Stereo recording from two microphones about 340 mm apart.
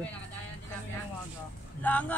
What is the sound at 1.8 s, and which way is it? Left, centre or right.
Speech, centre.